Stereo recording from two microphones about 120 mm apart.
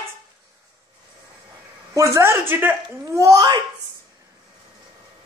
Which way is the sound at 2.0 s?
25° right (ahead or behind).